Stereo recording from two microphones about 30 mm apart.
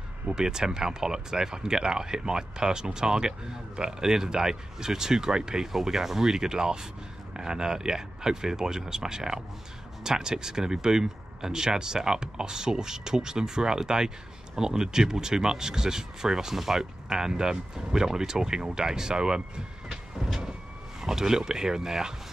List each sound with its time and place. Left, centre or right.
0.3 s speech: right
5.9 s speech: centre
6.4 s speech: right
17.1 s speech: right
21.0 s speech: centre